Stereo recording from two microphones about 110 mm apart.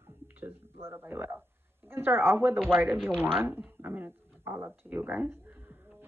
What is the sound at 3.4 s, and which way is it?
Speech, 20° right (ahead or behind).